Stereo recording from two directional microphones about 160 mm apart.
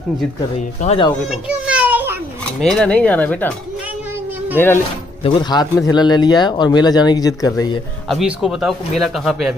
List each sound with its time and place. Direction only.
0.7 s speech: 40° left (ahead or behind)
1.3 s children playing: 10° right (ahead or behind)
2.6 s speech: 5° left (ahead or behind)
5.2 s speech: 30° left (ahead or behind)
8.1 s speech: 5° right (ahead or behind)